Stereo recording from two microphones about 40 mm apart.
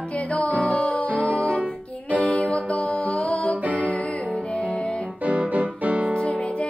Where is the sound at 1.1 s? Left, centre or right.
Right.